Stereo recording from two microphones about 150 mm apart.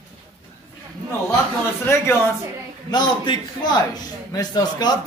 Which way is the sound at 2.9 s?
30° left (ahead or behind).